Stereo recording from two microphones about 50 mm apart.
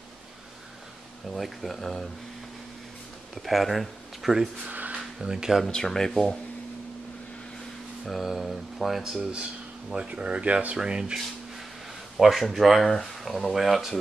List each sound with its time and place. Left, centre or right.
1.3 s speech: centre
3.4 s speech: centre
4.6 s a sound: right
4.9 s a sound: centre
5.7 s speech: centre
8.0 s speech: centre
9.3 s speech: centre
12.2 s speech: centre